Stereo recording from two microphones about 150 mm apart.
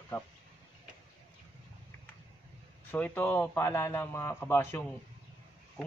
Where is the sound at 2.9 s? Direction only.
10° left (ahead or behind).